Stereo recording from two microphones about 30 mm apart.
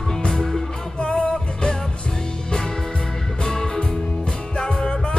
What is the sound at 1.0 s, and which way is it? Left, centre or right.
Music, left.